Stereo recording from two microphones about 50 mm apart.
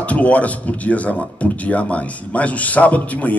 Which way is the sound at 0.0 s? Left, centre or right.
Left.